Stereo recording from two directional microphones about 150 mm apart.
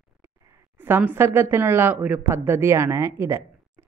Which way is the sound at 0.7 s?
10° right (ahead or behind).